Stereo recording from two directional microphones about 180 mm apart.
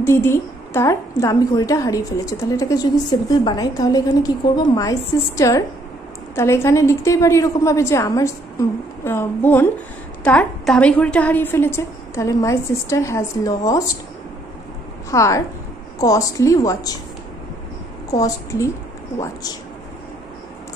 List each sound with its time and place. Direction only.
0.0 s a woman's voice: 15° left (ahead or behind)
15.0 s a woman's voice: 15° left (ahead or behind)
18.1 s a woman's voice: 20° left (ahead or behind)